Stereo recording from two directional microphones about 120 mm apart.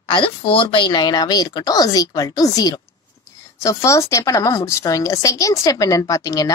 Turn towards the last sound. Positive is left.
turn(degrees=30)  # may be behind; listen again after turning